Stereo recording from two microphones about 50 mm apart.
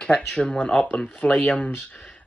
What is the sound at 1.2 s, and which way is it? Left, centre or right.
Speech, left.